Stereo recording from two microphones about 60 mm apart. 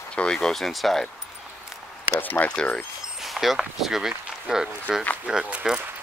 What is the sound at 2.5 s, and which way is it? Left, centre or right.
Speech, centre.